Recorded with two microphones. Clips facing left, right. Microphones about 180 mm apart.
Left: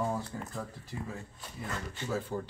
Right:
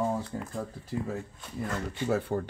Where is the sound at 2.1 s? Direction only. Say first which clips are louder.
Right 6 dB; 65° right (ahead or behind).